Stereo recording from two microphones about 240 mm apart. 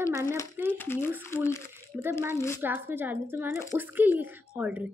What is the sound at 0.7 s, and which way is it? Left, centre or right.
Speech, centre.